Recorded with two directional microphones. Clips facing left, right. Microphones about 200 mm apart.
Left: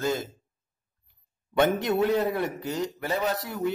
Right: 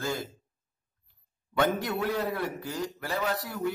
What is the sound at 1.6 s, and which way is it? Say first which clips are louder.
A man's voice: left 5 dB; 20° left (ahead or behind).